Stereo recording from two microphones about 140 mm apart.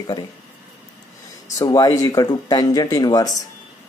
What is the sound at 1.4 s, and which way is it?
Speech, 25° left (ahead or behind).